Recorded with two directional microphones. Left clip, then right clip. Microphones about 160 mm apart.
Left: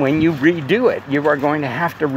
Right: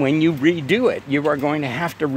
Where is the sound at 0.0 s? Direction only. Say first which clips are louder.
Left 2 dB; 45° right (ahead or behind).